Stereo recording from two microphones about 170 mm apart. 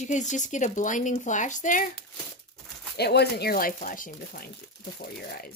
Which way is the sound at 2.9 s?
75° left (ahead or behind).